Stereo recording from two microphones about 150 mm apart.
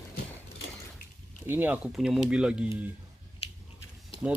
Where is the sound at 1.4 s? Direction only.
15° right (ahead or behind).